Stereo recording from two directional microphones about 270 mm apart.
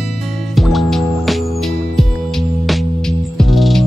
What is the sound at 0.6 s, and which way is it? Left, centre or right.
Music, centre.